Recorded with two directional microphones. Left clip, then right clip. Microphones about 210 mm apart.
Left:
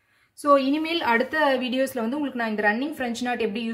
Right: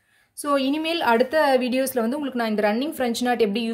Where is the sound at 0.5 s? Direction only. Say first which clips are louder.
Left 2 dB; 40° right (ahead or behind).